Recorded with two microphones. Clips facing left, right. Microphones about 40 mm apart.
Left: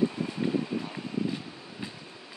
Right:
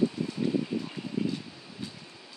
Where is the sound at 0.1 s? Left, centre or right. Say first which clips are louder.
Even; left.